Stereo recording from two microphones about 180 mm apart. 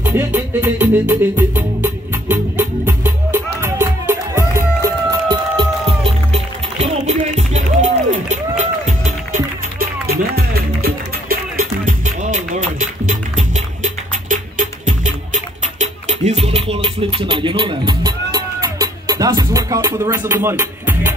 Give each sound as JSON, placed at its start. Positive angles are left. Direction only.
{"t": 0.0, "sound": "music", "side_deg": -10}
{"t": 5.6, "sound": "music", "side_deg": -30}